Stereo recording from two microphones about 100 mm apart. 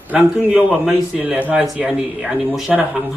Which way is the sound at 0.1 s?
15° right (ahead or behind).